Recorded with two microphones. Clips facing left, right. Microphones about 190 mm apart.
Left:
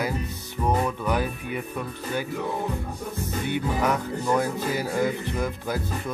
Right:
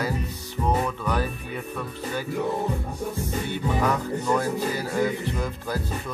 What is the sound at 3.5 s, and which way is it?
Speech, 15° left (ahead or behind).